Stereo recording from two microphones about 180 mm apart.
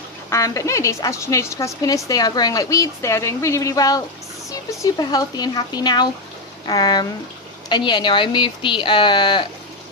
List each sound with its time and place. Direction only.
0.3 s speech: 15° left (ahead or behind)